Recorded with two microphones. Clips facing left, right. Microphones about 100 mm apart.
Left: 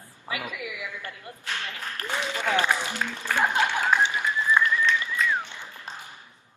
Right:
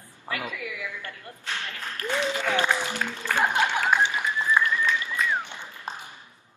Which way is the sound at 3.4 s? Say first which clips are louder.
Even; 15° right (ahead or behind).